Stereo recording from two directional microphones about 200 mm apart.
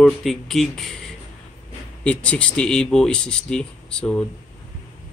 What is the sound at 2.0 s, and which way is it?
Speech, 5° left (ahead or behind).